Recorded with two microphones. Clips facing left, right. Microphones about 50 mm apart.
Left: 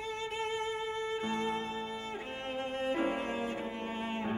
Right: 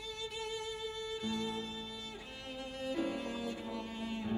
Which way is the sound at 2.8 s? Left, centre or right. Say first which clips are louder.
Left 4 dB; left.